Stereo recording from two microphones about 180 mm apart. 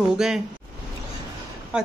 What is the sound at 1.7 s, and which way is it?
Speech, 5° right (ahead or behind).